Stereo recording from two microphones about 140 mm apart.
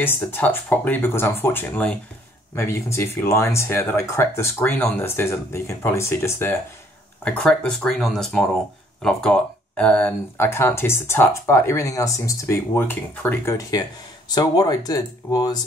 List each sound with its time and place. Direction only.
0.0 s speech: 15° left (ahead or behind)
7.2 s speech: 10° left (ahead or behind); by 15.6 s 25° left (ahead or behind)